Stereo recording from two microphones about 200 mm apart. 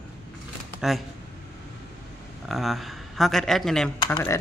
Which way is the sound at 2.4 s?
Centre (ahead or behind).